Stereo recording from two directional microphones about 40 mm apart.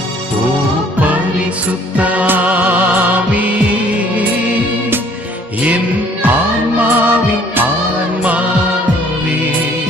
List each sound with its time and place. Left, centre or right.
0.9 s music: right
6.2 s music: right
8.2 s music: right